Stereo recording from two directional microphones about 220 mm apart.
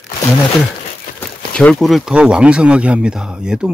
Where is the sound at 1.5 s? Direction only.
Centre (ahead or behind).